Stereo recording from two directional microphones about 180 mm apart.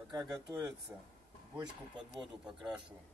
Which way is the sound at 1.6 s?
25° right (ahead or behind).